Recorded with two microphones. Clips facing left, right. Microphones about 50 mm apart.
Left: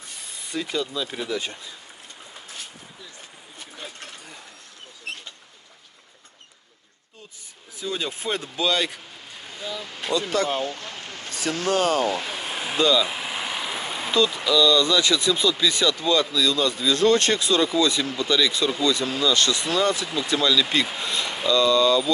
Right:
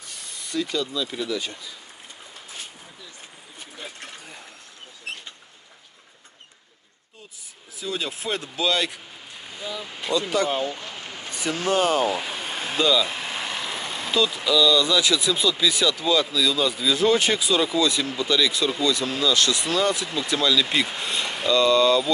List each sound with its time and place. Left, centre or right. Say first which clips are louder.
0.4 s speech: right 1 dB; centre
7.8 s speech: left 1 dB; centre
10.5 s a sound: right 1 dB; centre
14.1 s speech: left 1 dB; centre
21.1 s speech: even; centre